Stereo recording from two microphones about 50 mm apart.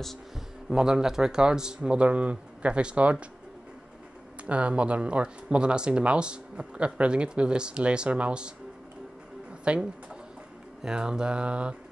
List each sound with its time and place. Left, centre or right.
0.7 s speech: centre
4.5 s speech: right
9.7 s speech: right